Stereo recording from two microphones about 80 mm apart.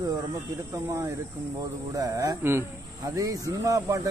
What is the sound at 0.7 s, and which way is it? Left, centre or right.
Speech, right.